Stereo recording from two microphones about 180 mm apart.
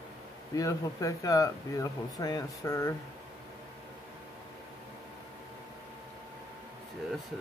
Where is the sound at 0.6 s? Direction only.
20° left (ahead or behind).